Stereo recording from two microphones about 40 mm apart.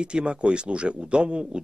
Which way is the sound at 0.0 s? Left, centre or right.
Right.